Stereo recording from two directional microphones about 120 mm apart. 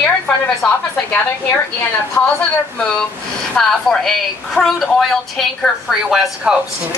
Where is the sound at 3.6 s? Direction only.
5° left (ahead or behind).